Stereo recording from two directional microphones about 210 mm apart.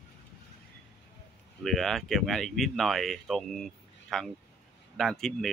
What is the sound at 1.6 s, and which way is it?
Speech, centre (ahead or behind).